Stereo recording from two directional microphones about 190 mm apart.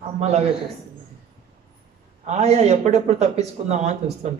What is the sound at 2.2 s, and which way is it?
Speech, 35° right (ahead or behind).